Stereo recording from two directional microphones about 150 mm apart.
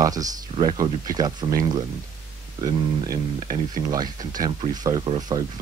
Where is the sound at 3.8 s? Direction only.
30° right (ahead or behind).